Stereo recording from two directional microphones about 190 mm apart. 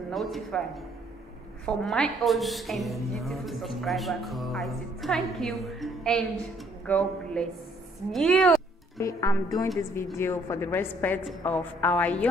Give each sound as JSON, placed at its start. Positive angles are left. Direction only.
{"t": 0.1, "sound": "a woman's voice", "side_deg": 0}
{"t": 1.8, "sound": "a woman's voice", "side_deg": 0}
{"t": 8.9, "sound": "a woman's voice", "side_deg": 15}